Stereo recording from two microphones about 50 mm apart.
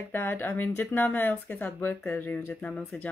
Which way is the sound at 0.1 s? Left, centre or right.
Left.